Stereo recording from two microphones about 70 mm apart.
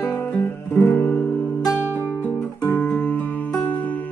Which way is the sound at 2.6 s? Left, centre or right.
Left.